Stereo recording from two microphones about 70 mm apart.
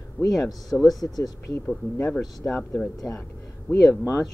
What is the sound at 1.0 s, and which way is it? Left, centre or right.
Speech, left.